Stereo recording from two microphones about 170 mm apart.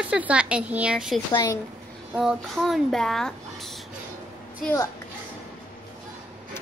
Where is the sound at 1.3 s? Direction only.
20° left (ahead or behind).